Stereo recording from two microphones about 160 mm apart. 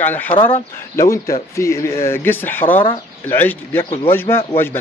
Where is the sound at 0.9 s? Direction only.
20° left (ahead or behind).